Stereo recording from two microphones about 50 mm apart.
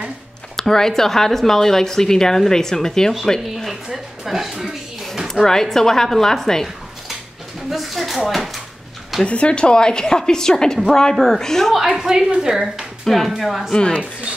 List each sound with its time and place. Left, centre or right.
0.6 s speech: centre
3.3 s a woman's voice: centre
5.3 s speech: centre
7.7 s a woman's voice: centre
9.2 s speech: left
12.0 s speech: centre
13.0 s speech: centre
13.3 s speech: centre
13.7 s speech: centre